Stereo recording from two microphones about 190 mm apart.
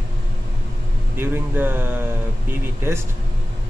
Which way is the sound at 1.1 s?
10° right (ahead or behind).